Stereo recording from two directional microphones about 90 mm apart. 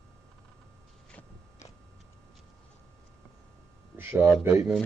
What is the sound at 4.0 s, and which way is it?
Speech, 25° right (ahead or behind).